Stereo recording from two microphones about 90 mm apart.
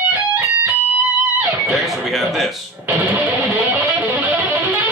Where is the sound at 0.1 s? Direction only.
20° right (ahead or behind).